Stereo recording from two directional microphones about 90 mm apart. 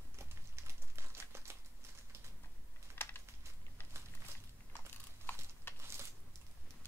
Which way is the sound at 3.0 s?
25° left (ahead or behind).